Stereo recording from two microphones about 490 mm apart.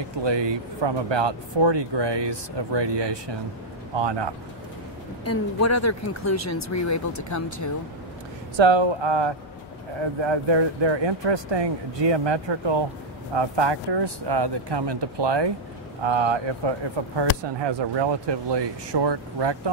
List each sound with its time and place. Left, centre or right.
0.2 s speech: right
5.2 s speech: left
8.5 s speech: right